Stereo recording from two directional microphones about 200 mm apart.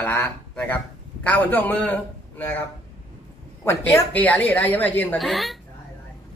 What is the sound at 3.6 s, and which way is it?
Speech, 10° left (ahead or behind).